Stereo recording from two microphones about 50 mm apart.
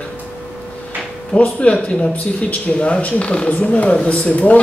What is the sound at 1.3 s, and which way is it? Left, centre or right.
Speech, left.